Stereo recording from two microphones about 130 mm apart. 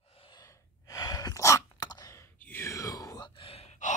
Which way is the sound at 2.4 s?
20° left (ahead or behind).